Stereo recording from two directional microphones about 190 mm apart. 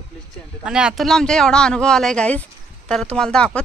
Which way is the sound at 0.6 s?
5° right (ahead or behind).